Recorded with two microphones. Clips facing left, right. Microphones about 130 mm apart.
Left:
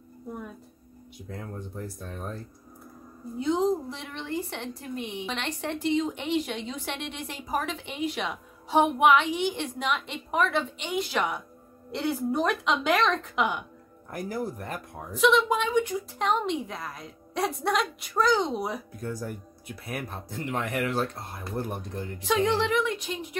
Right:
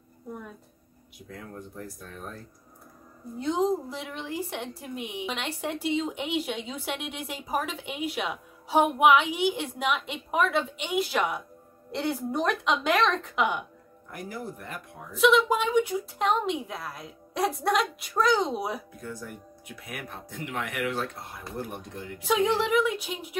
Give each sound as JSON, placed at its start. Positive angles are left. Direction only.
{"t": 2.0, "sound": "speech", "side_deg": 25}
{"t": 3.3, "sound": "a woman's voice", "side_deg": 0}
{"t": 14.1, "sound": "speech", "side_deg": 40}
{"t": 15.1, "sound": "a woman's voice", "side_deg": -5}
{"t": 18.9, "sound": "speech", "side_deg": 40}
{"t": 22.2, "sound": "a woman's voice", "side_deg": -5}